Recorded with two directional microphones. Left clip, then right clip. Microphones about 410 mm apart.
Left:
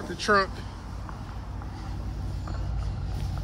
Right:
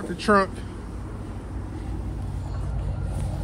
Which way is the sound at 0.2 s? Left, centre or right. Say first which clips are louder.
Right 3 dB; centre.